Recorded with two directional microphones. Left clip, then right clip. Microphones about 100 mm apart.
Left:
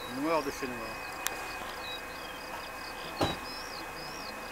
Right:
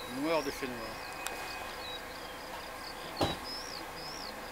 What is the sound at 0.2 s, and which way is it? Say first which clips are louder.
Speech: left 2 dB; 25° right (ahead or behind).